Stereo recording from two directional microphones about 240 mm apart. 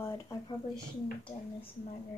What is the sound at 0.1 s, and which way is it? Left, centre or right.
Speech, centre.